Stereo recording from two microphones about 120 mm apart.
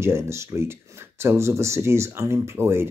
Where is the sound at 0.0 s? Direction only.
20° right (ahead or behind).